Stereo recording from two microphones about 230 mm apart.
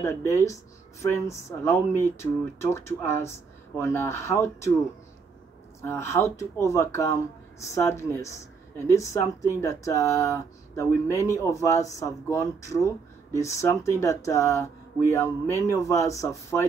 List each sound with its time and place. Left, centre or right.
0.0 s speech: centre
5.8 s speech: centre